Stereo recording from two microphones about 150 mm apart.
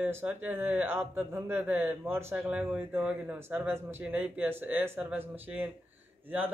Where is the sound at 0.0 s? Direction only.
15° right (ahead or behind).